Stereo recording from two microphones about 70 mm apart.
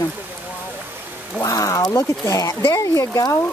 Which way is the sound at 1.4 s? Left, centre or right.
Left.